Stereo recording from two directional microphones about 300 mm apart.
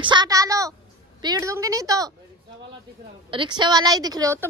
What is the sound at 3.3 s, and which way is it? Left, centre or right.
Speech, centre.